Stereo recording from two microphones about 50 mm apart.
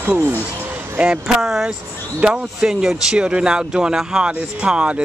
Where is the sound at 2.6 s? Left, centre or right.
Centre.